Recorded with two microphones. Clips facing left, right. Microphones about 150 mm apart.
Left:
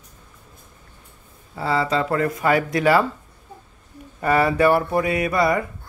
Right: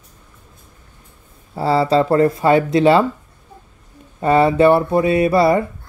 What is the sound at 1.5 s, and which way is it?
Speech, 35° right (ahead or behind).